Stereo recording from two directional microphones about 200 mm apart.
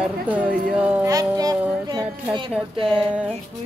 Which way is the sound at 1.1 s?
20° right (ahead or behind).